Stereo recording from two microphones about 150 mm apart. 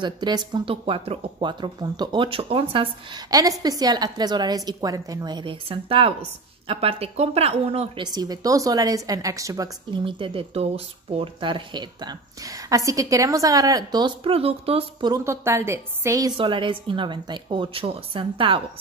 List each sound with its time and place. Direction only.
0.0 s speech: 30° right (ahead or behind)
3.3 s a woman's voice: 25° right (ahead or behind); by 8.0 s 45° right (ahead or behind)
8.0 s a woman's voice: 25° right (ahead or behind)
16.3 s speech: 35° right (ahead or behind)